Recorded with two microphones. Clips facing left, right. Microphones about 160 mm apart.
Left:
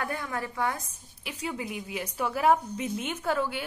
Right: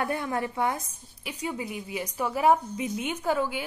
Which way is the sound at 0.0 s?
25° right (ahead or behind).